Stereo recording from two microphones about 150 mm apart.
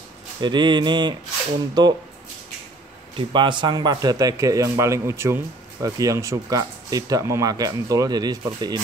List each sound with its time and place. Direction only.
0.4 s mantra: 30° right (ahead or behind)
1.8 s speech: 25° right (ahead or behind)
3.2 s speech: 35° right (ahead or behind)